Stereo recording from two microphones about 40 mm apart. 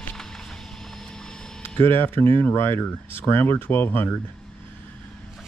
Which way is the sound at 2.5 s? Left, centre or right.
Left.